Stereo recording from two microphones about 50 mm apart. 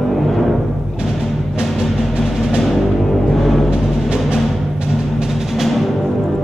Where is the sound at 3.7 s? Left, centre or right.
Centre.